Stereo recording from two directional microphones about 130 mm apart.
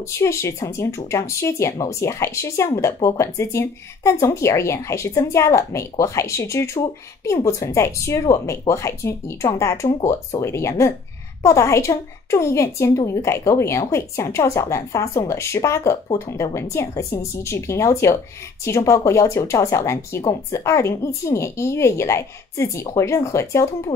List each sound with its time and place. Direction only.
0.1 s speech: 20° left (ahead or behind)